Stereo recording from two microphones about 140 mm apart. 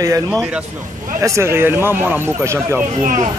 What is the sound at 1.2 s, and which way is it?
A man's voice, 20° right (ahead or behind).